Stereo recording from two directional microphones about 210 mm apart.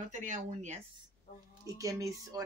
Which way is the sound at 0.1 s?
35° right (ahead or behind).